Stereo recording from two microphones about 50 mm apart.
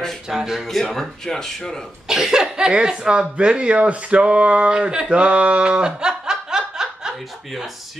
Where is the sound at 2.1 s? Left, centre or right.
Centre.